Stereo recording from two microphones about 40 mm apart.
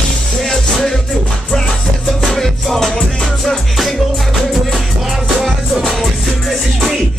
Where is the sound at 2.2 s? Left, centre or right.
Centre.